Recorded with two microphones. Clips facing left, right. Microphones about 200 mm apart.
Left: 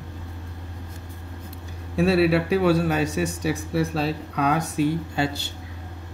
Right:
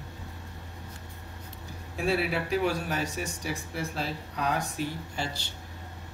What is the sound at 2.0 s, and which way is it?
Speech, 75° left (ahead or behind).